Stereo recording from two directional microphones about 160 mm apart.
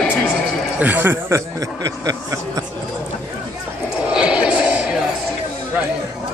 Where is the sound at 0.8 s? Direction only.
10° right (ahead or behind).